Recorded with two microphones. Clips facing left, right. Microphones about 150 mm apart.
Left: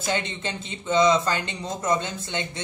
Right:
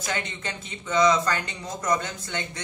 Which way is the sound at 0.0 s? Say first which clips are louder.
Left 4 dB; 25° left (ahead or behind).